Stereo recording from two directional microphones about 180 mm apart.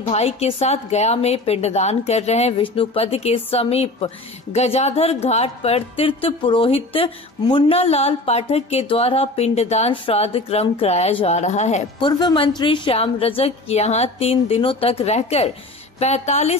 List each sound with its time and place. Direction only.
0.0 s a woman's voice: 35° left (ahead or behind)
12.1 s a woman's voice: 25° left (ahead or behind); by 16.5 s 40° left (ahead or behind)